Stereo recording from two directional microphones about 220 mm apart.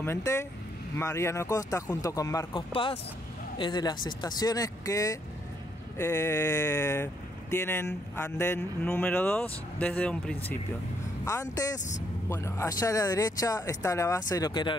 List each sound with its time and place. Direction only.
0.0 s speech: 10° left (ahead or behind)
12.3 s speech: 10° left (ahead or behind)